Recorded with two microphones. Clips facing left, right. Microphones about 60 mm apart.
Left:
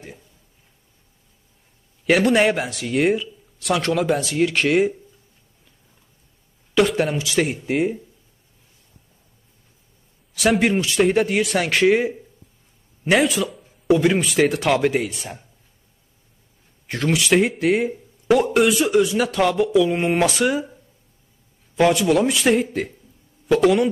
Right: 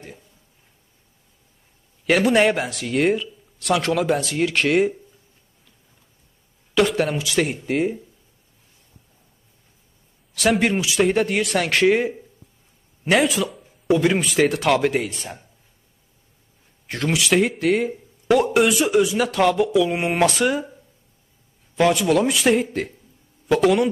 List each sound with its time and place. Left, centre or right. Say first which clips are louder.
2.0 s speech: even; centre
6.7 s speech: left 1 dB; centre
10.3 s speech: left 1 dB; centre
16.8 s speech: left 1 dB; centre
21.7 s speech: left 1 dB; centre